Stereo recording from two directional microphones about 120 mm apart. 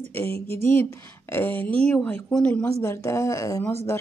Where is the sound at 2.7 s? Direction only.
25° left (ahead or behind).